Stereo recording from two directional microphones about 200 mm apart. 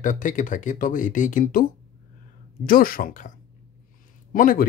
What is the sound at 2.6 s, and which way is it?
Speech, 45° left (ahead or behind).